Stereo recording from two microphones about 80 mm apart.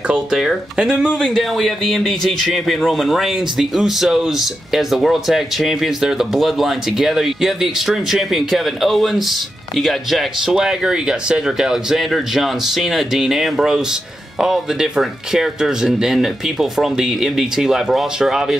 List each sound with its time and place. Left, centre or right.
0.1 s speech: centre